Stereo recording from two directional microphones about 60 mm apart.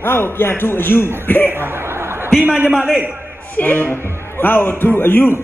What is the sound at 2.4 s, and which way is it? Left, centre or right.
Speech, right.